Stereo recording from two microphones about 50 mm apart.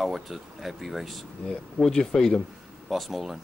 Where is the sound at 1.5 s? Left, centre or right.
Centre.